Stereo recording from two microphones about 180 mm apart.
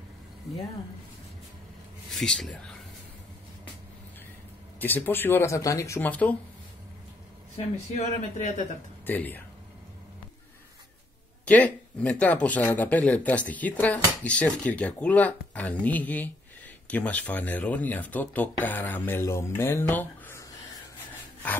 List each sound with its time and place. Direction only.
2.0 s speech: centre (ahead or behind)
4.7 s speech: 10° left (ahead or behind)
7.5 s speech: 35° left (ahead or behind)
9.0 s speech: 10° left (ahead or behind)
11.4 s speech: 10° left (ahead or behind)